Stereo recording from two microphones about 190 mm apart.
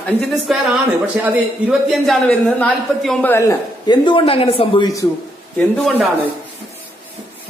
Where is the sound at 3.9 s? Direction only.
25° left (ahead or behind).